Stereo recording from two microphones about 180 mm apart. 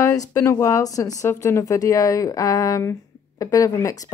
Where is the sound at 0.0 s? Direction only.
15° left (ahead or behind).